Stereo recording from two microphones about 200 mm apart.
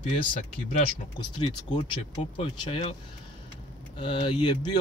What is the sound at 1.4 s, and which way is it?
Speech, 25° left (ahead or behind).